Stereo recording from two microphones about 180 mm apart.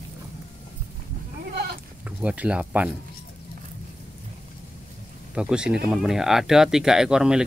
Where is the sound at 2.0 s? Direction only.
5° right (ahead or behind).